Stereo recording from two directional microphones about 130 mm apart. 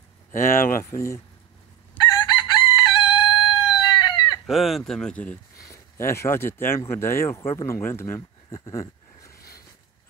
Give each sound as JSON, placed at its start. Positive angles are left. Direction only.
{"t": 0.3, "sound": "speech", "side_deg": 90}
{"t": 0.8, "sound": "speech", "side_deg": 20}
{"t": 2.1, "sound": "chicken", "side_deg": 35}
{"t": 4.5, "sound": "speech", "side_deg": 0}
{"t": 5.7, "sound": "speech", "side_deg": 20}
{"t": 8.5, "sound": "a sound", "side_deg": 25}